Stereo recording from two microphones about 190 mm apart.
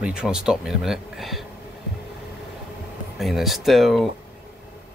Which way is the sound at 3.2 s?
Centre (ahead or behind).